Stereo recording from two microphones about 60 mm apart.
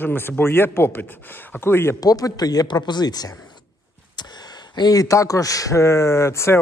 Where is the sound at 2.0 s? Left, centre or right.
Left.